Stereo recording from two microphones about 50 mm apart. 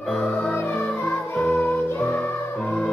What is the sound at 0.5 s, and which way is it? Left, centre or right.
Music, left.